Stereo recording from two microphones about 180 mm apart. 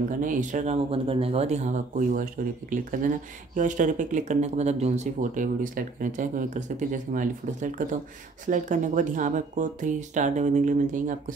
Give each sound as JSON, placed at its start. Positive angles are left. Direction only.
{"t": 0.2, "sound": "speech", "side_deg": -45}